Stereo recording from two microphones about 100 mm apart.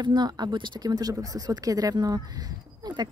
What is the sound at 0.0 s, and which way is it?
A woman's voice, 45° right (ahead or behind).